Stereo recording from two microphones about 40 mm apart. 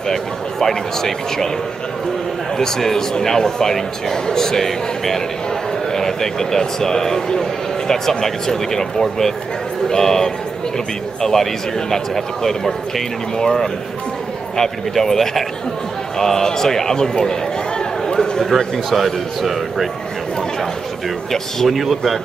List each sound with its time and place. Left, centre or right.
0.1 s a man's voice: centre
2.5 s a man's voice: centre
12.4 s a man's voice: centre
18.0 s a sound: centre
18.4 s a man's voice: centre
21.6 s a man's voice: centre